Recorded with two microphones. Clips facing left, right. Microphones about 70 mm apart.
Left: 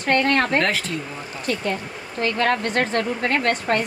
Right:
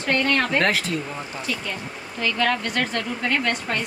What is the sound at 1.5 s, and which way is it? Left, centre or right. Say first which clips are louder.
A woman's voice: left 8 dB; left.